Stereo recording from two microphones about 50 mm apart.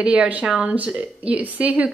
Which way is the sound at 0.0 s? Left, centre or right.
Right.